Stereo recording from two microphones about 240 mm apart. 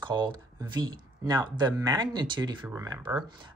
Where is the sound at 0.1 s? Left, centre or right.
Centre.